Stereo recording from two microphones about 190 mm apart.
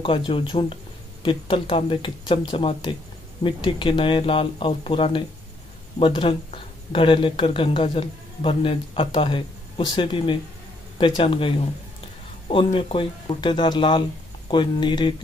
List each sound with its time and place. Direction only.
0.0 s speech: 30° left (ahead or behind)